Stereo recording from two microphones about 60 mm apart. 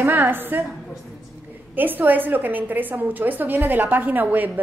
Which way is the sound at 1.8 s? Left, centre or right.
Right.